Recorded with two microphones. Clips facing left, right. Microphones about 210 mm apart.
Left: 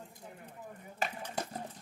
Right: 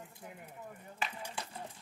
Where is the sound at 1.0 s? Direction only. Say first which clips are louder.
Left 4 dB; 40° left (ahead or behind).